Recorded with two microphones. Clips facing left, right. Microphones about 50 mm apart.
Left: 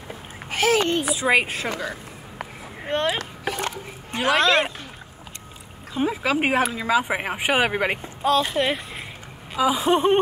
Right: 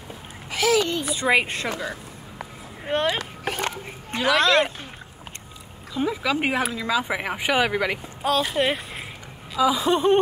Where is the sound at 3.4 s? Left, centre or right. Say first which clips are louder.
Even; right.